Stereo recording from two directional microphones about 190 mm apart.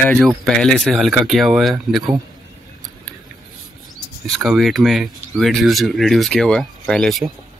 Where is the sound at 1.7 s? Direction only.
20° right (ahead or behind).